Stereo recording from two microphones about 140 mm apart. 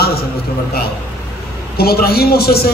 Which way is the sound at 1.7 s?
90° left.